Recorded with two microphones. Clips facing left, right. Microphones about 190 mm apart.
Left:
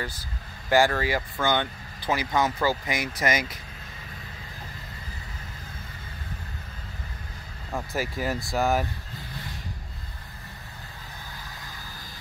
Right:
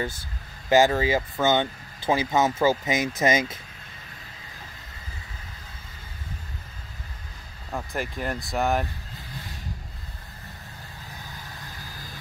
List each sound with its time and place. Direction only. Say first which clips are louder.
0.7 s speech: right 3 dB; 20° right (ahead or behind)
7.7 s speech: left 1 dB; 5° left (ahead or behind)